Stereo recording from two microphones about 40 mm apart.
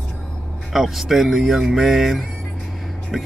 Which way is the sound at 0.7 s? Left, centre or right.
Centre.